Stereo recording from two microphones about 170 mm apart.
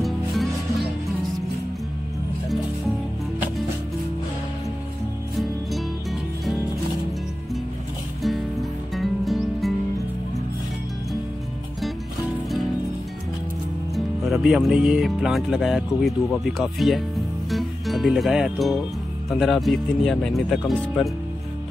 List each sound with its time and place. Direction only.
0.0 s music: centre (ahead or behind)
5.4 s music: centre (ahead or behind)
8.2 s music: centre (ahead or behind)
13.9 s speech: centre (ahead or behind)
17.5 s music: centre (ahead or behind)
19.3 s speech: centre (ahead or behind)